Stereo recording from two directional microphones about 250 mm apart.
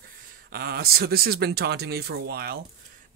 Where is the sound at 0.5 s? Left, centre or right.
Right.